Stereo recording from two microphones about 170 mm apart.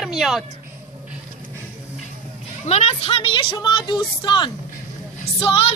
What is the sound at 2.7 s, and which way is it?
A woman's voice, 40° left (ahead or behind).